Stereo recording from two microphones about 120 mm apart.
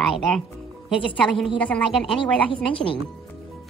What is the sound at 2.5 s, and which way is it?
Speech, 50° left (ahead or behind).